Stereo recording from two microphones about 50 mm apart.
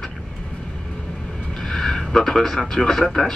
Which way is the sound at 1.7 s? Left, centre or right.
Centre.